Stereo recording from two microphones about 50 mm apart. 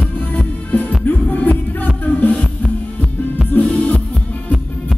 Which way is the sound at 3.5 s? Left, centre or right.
Left.